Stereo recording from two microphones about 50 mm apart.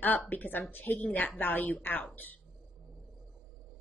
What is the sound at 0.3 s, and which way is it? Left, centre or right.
A woman's voice, left.